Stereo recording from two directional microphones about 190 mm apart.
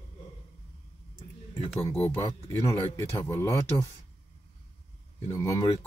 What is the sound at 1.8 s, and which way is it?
Speech, 15° left (ahead or behind).